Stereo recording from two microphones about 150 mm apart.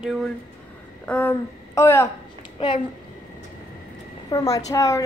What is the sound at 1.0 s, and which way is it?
Speech, 10° left (ahead or behind).